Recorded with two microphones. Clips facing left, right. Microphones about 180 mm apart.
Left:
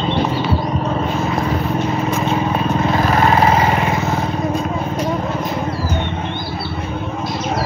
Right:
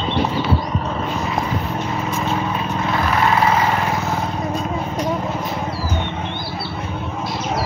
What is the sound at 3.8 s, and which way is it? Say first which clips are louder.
Vehicle: left 3 dB; 5° left (ahead or behind).